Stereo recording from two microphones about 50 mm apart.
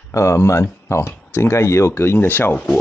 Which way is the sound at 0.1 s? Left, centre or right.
Left.